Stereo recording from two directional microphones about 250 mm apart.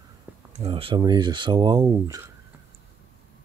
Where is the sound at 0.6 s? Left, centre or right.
Right.